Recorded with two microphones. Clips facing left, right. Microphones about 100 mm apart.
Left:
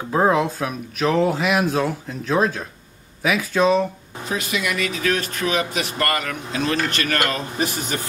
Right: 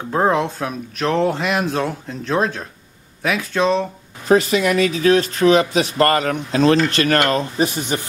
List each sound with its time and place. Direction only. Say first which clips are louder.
0.1 s speech: even; centre (ahead or behind)
4.3 s speech: right 10 dB; 40° right (ahead or behind)